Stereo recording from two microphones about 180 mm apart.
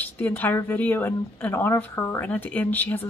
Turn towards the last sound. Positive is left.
turn(degrees=10)  # may be behind; listen again after turning